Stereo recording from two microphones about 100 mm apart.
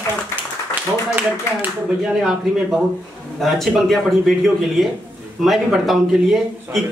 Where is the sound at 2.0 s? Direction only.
5° right (ahead or behind).